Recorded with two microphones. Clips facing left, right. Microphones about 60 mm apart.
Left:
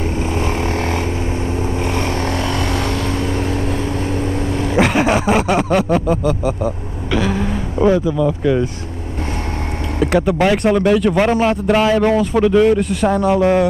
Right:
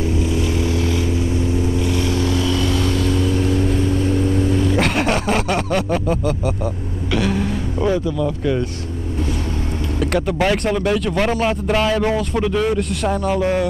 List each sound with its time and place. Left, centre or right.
0.0 s vehicle: left
4.7 s a sound: centre
7.8 s speech: centre
9.9 s speech: centre